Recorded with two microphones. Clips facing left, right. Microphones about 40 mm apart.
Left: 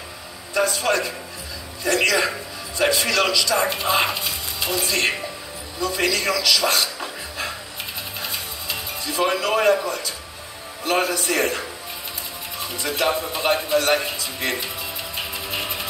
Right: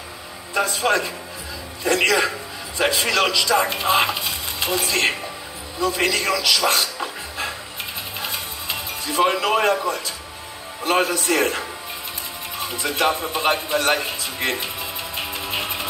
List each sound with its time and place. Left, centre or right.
0.6 s a man's voice: centre
4.6 s music: right
5.8 s a man's voice: centre
8.2 s music: centre
10.8 s a man's voice: centre
11.1 s a man's voice: centre
12.7 s a man's voice: centre
15.5 s music: right